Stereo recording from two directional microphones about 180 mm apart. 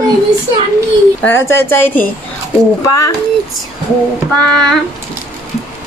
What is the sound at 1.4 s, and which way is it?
A woman's voice, 15° left (ahead or behind).